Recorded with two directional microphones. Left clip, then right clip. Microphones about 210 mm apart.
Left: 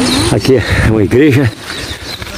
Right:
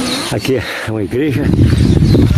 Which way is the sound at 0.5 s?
25° left (ahead or behind).